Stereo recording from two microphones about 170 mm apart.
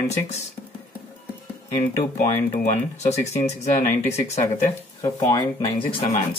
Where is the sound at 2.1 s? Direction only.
50° left (ahead or behind).